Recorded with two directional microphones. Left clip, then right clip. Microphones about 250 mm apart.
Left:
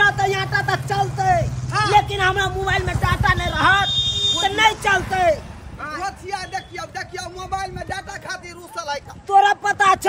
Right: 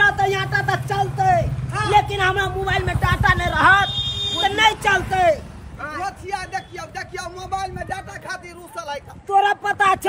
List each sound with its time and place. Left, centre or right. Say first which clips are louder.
0.0 s vehicle: even; centre
3.9 s buzzer: left 4 dB; right
4.4 s speech: right 3 dB; centre